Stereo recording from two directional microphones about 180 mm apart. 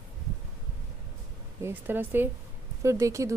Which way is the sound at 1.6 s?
10° right (ahead or behind).